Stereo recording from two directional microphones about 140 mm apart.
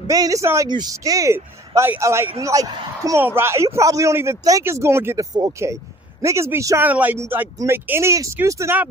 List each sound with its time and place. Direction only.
0.1 s speech: 25° right (ahead or behind)